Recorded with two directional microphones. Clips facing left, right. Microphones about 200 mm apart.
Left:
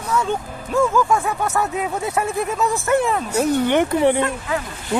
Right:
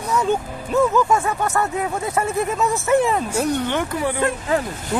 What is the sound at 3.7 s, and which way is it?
Speech, 25° left (ahead or behind).